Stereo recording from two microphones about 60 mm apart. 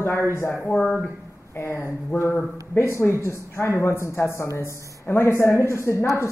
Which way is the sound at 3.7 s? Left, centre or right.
Left.